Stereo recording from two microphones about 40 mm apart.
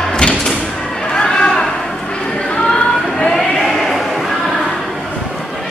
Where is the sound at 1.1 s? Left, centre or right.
Left.